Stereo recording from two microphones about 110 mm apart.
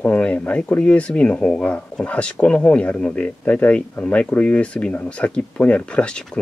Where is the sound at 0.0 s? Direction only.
10° left (ahead or behind).